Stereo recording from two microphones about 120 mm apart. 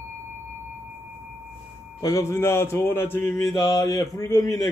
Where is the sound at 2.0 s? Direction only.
30° left (ahead or behind).